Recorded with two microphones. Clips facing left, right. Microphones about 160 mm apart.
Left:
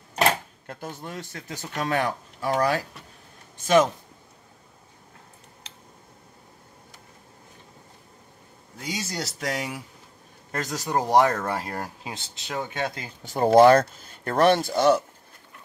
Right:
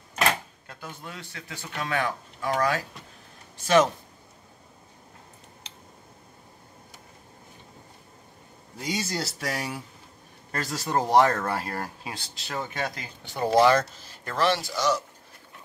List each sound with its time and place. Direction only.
0.7 s speech: 40° left (ahead or behind)
3.6 s speech: 15° left (ahead or behind)
8.8 s speech: centre (ahead or behind)
10.5 s speech: 15° left (ahead or behind)
13.2 s speech: 45° left (ahead or behind)